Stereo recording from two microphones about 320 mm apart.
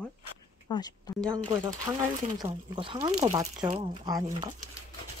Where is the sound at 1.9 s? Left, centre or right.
Centre.